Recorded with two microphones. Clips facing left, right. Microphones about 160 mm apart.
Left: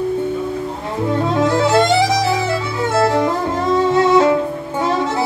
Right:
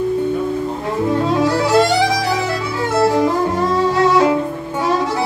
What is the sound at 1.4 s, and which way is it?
Music, 20° left (ahead or behind).